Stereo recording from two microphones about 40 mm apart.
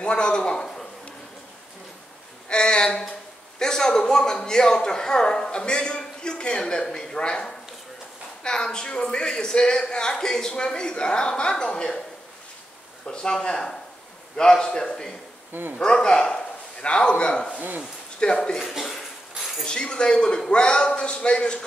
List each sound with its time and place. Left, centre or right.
0.0 s a man's voice: left
2.5 s a man's voice: left
13.0 s a man's voice: left
18.6 s a sound: centre
19.6 s a man's voice: left